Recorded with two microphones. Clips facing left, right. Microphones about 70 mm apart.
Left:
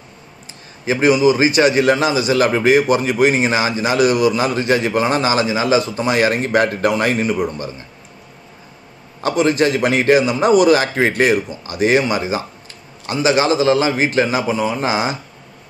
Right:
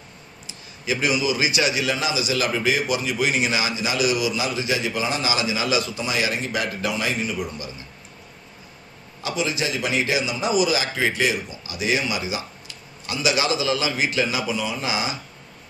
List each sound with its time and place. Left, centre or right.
0.8 s a man's voice: left
9.2 s a man's voice: left